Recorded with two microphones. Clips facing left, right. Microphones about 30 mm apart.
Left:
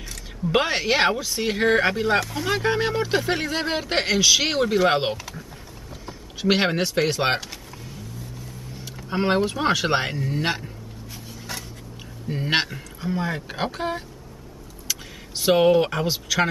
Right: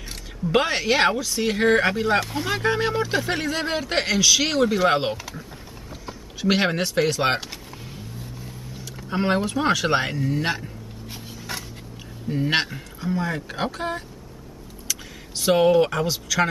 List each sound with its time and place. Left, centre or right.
0.5 s speech: centre
9.1 s speech: centre
12.3 s speech: centre